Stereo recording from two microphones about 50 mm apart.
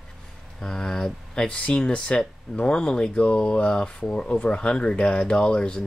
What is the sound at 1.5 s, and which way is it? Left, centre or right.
Speech, left.